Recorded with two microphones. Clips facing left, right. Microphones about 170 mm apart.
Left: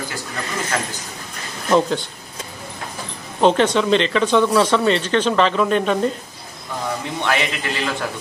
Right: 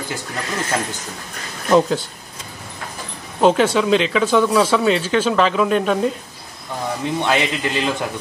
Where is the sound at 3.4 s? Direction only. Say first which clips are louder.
Right 1 dB; 5° right (ahead or behind).